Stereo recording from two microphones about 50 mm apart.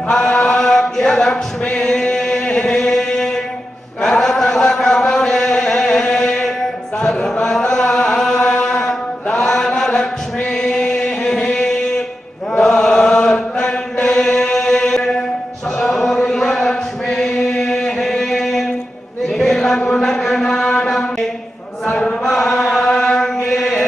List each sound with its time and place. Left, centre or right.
0.1 s chant: centre
0.6 s a sound: centre
2.1 s chant: centre
8.7 s mantra: centre
10.7 s a sound: centre
12.5 s chant: left
17.8 s a sound: centre
19.2 s chant: centre
19.8 s mantra: centre
21.8 s chant: centre